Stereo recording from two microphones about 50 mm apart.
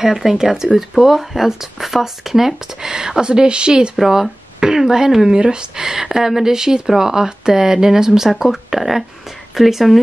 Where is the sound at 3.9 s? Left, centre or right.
Centre.